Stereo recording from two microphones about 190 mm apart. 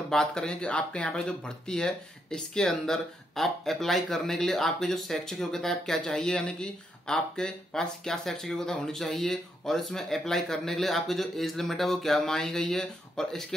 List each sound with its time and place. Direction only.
0.1 s speech: 5° left (ahead or behind)